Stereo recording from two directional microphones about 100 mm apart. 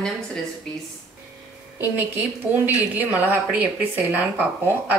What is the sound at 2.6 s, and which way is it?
Speech, 15° right (ahead or behind).